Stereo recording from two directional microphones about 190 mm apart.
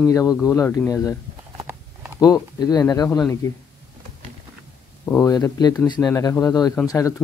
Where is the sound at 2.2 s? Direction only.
20° left (ahead or behind).